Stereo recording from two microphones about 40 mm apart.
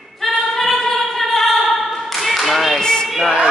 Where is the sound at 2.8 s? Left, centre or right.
Centre.